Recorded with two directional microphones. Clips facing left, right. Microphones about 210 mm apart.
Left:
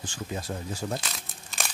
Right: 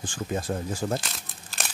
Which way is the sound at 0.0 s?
50° right (ahead or behind).